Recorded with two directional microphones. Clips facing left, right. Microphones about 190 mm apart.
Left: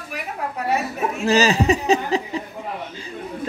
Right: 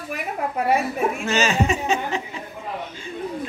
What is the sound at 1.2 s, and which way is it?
Speech, 35° left (ahead or behind).